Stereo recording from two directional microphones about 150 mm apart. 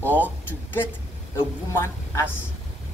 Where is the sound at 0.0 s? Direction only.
10° left (ahead or behind).